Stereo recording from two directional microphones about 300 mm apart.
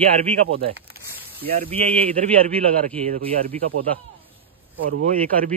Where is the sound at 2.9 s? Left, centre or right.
Right.